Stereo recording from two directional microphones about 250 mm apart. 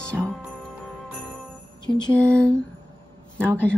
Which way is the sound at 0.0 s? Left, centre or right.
Centre.